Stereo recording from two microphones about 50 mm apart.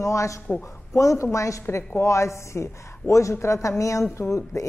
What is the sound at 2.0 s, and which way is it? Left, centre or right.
A woman's voice, left.